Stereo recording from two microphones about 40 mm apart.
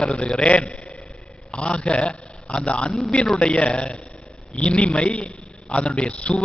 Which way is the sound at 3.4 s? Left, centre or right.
Left.